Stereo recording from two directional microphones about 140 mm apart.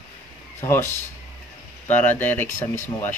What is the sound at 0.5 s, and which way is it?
Speech, 15° left (ahead or behind).